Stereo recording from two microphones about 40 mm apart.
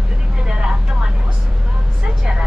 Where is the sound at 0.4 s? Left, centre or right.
Centre.